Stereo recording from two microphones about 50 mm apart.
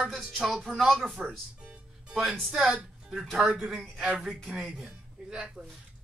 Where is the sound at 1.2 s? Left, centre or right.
Centre.